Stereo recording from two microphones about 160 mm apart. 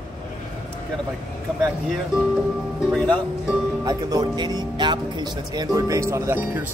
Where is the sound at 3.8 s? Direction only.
25° right (ahead or behind).